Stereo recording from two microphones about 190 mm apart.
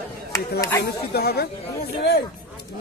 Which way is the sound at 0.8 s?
55° left (ahead or behind).